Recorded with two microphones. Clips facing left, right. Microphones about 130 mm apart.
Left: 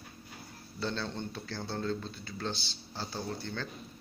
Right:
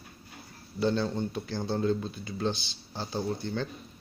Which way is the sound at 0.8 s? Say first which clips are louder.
Right 8 dB; 15° right (ahead or behind).